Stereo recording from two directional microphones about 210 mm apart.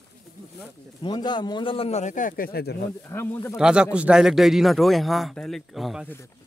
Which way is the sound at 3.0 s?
10° left (ahead or behind).